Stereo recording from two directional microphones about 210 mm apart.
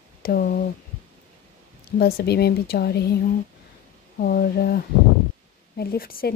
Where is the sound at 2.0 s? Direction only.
45° left (ahead or behind).